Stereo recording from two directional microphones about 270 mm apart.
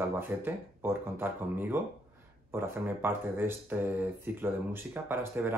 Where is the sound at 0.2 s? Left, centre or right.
Centre.